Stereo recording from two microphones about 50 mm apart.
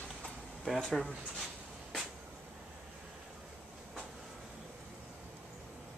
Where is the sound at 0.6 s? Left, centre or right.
Centre.